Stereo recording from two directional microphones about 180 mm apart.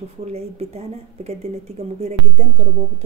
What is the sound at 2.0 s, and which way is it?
Speech, 35° right (ahead or behind).